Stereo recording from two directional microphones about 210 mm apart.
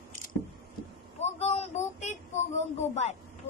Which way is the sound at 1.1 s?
30° left (ahead or behind).